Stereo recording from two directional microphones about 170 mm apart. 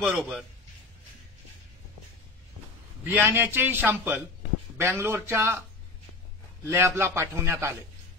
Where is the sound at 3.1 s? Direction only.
10° right (ahead or behind).